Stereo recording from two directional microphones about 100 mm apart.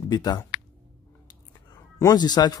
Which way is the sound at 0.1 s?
40° left (ahead or behind).